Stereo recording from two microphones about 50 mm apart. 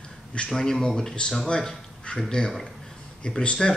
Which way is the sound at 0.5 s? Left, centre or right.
Centre.